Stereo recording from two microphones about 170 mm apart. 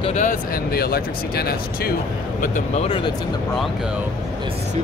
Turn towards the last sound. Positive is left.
turn(degrees=30)  # may be behind; listen again after turning